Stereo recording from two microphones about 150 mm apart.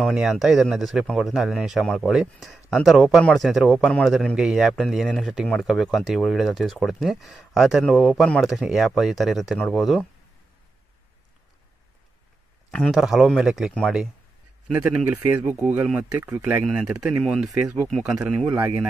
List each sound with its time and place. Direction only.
0.0 s speech: 5° right (ahead or behind)
12.7 s speech: 5° left (ahead or behind)
18.5 s speech: 20° right (ahead or behind)